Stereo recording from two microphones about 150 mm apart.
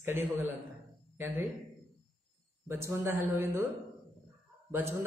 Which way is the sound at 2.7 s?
15° right (ahead or behind).